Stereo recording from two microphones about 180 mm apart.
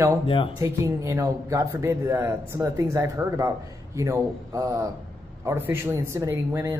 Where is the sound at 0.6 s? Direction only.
15° right (ahead or behind).